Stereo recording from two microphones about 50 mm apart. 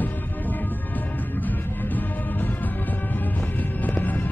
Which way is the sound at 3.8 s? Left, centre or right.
Left.